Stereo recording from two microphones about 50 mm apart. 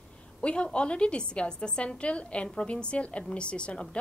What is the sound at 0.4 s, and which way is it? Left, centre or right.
A woman's voice, left.